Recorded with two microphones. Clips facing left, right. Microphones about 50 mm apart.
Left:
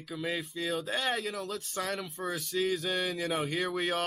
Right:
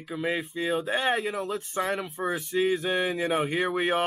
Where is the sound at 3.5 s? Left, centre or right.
Right.